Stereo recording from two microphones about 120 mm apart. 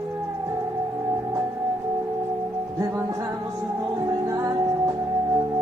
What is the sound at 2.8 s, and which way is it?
Music, 25° right (ahead or behind).